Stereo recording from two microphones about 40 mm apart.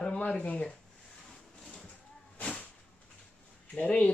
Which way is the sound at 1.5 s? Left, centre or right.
Centre.